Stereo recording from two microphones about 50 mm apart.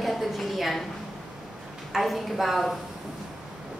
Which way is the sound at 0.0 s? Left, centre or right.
Centre.